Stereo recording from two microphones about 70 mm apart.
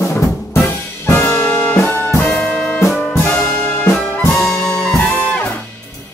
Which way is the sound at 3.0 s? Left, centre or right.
Left.